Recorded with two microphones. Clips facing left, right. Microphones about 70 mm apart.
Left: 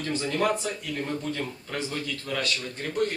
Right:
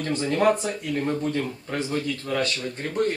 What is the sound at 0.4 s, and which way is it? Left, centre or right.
Speech, right.